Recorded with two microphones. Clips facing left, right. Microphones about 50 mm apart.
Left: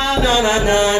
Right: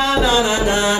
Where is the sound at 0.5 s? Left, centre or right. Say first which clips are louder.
Left 2 dB; centre.